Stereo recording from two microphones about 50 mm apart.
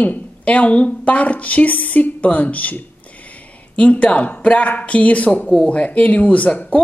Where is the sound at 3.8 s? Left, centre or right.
Left.